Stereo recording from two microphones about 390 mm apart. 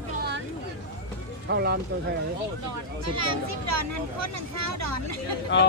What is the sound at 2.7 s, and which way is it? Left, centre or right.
Speech, right.